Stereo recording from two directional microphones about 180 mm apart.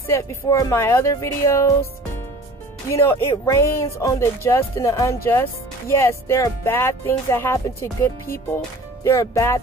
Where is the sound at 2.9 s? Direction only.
15° left (ahead or behind).